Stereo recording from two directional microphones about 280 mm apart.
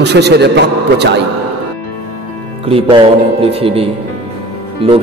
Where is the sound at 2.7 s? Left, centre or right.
Centre.